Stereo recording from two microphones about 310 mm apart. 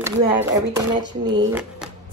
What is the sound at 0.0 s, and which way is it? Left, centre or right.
Speech, centre.